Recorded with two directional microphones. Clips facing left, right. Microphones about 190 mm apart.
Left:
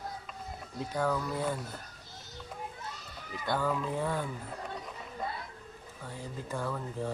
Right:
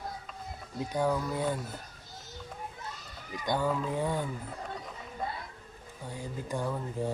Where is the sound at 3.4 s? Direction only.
15° right (ahead or behind).